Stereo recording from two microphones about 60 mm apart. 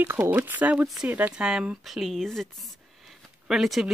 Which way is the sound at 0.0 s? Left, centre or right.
Right.